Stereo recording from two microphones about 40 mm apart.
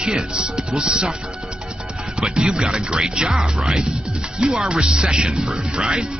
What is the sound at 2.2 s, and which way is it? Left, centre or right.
A man's voice, right.